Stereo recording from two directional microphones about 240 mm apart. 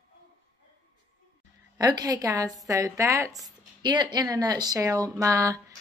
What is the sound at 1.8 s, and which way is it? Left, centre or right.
A woman's voice, centre.